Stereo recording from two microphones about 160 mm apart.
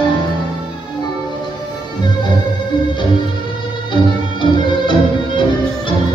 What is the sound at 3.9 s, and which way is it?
Music, 30° left (ahead or behind).